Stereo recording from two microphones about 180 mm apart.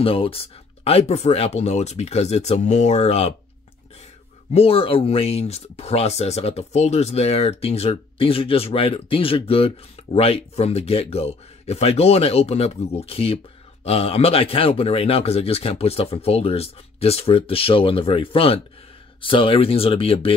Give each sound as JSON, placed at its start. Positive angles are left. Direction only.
{"t": 0.0, "sound": "speech", "side_deg": 30}
{"t": 4.6, "sound": "speech", "side_deg": 30}